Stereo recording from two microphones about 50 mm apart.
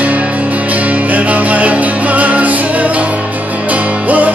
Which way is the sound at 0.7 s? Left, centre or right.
Right.